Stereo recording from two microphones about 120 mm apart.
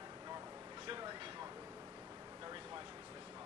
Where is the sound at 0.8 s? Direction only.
40° right (ahead or behind).